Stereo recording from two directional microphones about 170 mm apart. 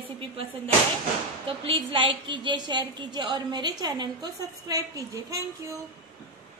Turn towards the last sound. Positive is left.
turn(degrees=-20)  # may be behind; listen again after turning